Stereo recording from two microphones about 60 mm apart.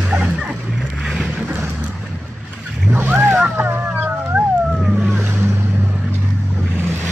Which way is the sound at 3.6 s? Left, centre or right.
Right.